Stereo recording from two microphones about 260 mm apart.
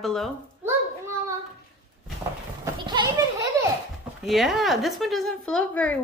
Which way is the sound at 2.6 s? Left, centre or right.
Centre.